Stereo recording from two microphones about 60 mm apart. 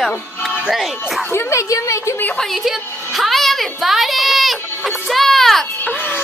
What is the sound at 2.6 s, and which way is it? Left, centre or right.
A woman's voice, centre.